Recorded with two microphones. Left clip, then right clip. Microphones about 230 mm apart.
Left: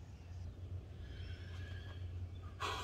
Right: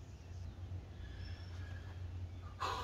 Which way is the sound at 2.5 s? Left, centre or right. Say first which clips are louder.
Right 2 dB; centre.